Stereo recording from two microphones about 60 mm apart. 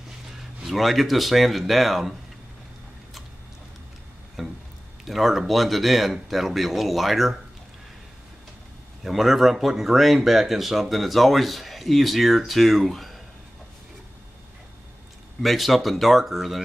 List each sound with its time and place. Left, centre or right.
0.4 s speech: centre
4.4 s a sound: centre
5.0 s speech: centre
9.0 s speech: centre
15.4 s speech: centre